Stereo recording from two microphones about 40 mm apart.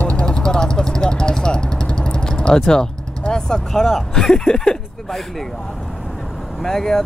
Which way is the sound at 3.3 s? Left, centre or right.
Centre.